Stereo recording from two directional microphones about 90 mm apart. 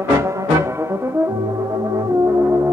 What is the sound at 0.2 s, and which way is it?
Brass instrument, 30° right (ahead or behind).